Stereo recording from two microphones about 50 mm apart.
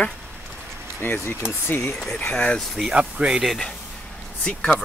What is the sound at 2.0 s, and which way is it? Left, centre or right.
Speech, left.